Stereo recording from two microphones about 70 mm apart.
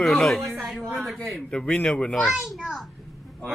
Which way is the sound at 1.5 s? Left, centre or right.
Centre.